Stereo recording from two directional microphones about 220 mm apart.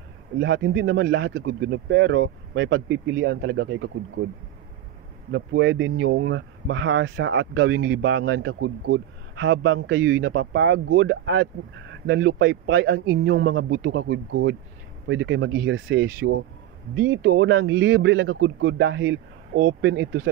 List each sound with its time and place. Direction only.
0.4 s speech: 55° right (ahead or behind)
5.3 s speech: 55° right (ahead or behind)